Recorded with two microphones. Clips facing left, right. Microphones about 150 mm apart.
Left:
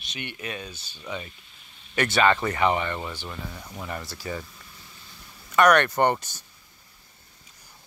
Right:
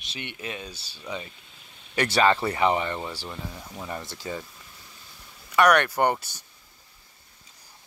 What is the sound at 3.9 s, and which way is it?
Speech, 20° right (ahead or behind).